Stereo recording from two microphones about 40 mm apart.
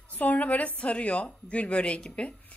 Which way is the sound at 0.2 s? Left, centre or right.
Left.